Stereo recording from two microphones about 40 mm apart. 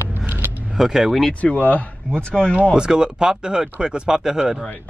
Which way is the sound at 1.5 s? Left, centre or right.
Left.